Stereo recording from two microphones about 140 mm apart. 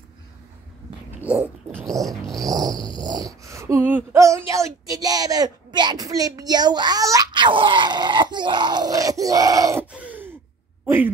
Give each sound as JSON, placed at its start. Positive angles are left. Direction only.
{"t": 1.2, "sound": "speech", "side_deg": -10}
{"t": 2.3, "sound": "speech", "side_deg": -25}
{"t": 9.8, "sound": "gasp", "side_deg": -10}